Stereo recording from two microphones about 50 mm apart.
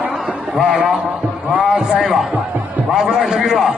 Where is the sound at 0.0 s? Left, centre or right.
Right.